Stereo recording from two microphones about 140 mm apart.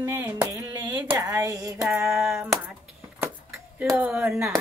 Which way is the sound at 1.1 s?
25° right (ahead or behind).